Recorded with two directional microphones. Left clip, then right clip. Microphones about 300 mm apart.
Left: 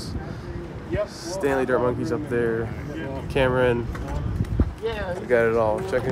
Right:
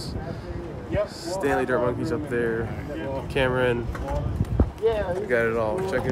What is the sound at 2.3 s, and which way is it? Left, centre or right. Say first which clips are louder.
Speech: left 2 dB; left.